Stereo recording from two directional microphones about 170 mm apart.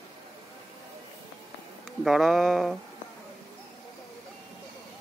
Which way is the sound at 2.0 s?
Centre (ahead or behind).